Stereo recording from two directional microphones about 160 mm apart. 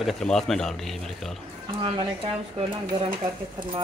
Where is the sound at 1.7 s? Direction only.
30° right (ahead or behind).